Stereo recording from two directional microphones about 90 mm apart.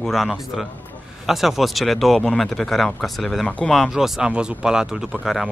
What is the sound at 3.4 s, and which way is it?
Speech, 15° left (ahead or behind).